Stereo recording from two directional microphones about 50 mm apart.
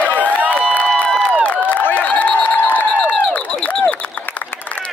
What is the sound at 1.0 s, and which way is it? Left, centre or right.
Crowd, left.